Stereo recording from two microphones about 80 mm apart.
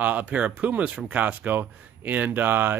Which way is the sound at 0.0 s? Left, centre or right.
Right.